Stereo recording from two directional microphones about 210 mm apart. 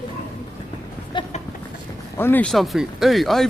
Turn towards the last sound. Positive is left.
turn(degrees=0)  # may be behind; listen again after turning